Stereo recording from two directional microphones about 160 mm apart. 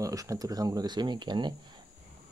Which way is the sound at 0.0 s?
20° right (ahead or behind).